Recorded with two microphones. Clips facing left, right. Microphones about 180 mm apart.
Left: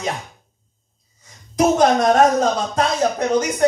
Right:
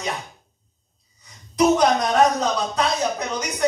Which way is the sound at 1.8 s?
50° left (ahead or behind).